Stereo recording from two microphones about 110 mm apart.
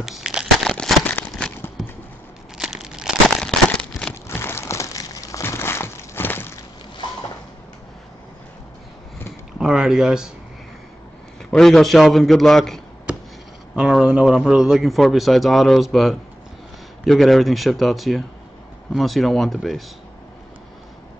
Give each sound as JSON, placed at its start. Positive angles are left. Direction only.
{"t": 0.0, "sound": "crumpling", "side_deg": -5}
{"t": 0.7, "sound": "a sound", "side_deg": 5}
{"t": 2.5, "sound": "crumpling", "side_deg": -5}
{"t": 3.9, "sound": "a sound", "side_deg": 30}
{"t": 9.6, "sound": "speech", "side_deg": -5}
{"t": 11.5, "sound": "a man's voice", "side_deg": 5}
{"t": 13.7, "sound": "a man's voice", "side_deg": -10}